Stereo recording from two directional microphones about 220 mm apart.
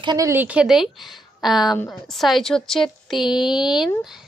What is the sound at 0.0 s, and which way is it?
A woman's voice, 15° right (ahead or behind).